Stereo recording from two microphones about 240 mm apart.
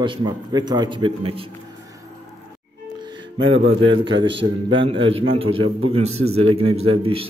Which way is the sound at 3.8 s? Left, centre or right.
Right.